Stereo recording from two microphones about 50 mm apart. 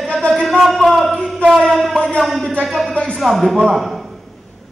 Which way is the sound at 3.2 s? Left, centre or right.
Centre.